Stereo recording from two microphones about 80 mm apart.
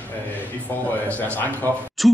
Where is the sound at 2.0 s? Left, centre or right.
Centre.